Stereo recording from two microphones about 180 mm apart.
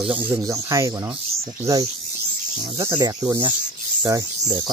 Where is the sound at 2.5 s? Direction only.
20° right (ahead or behind).